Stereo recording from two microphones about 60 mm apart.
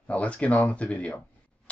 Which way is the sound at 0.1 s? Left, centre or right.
Left.